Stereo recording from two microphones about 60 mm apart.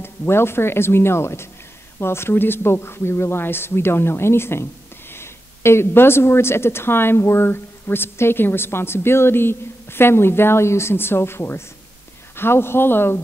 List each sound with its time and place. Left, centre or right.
0.0 s speech: left